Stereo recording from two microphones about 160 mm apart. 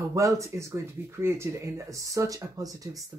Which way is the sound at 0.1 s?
20° right (ahead or behind).